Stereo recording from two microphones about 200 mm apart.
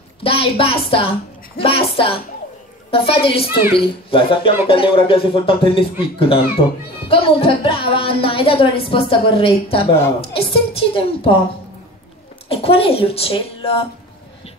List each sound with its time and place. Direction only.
0.2 s a woman's voice: 30° left (ahead or behind)
12.4 s speech: 30° left (ahead or behind)